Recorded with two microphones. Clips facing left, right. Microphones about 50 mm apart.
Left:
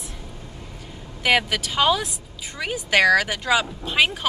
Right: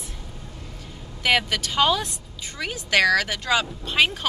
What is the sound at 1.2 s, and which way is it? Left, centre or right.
A woman's voice, centre.